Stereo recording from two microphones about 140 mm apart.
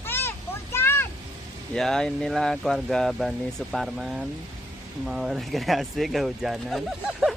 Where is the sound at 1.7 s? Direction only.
5° left (ahead or behind).